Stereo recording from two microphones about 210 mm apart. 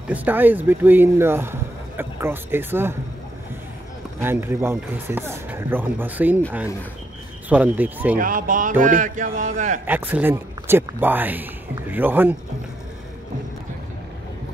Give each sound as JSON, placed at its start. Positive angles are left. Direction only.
{"t": 0.1, "sound": "speech", "side_deg": -10}
{"t": 4.2, "sound": "speech", "side_deg": -10}
{"t": 7.4, "sound": "speech", "side_deg": -5}
{"t": 8.2, "sound": "speech", "side_deg": -40}
{"t": 9.8, "sound": "speech", "side_deg": -10}